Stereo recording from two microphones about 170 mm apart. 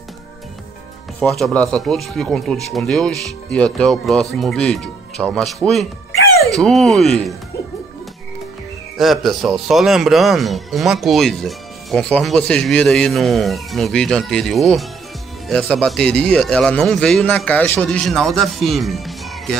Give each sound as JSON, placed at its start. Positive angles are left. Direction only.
{"t": 1.2, "sound": "speech", "side_deg": 5}
{"t": 8.9, "sound": "speech", "side_deg": 0}